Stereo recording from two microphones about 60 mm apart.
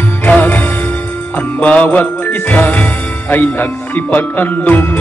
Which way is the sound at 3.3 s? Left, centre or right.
Left.